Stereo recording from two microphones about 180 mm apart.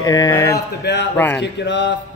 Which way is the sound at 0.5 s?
70° left (ahead or behind).